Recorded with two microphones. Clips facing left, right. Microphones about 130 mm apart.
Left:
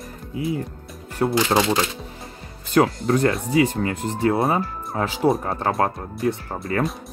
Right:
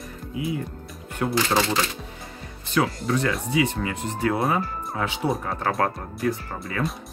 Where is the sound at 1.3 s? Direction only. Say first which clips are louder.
Left 3 dB; 15° left (ahead or behind).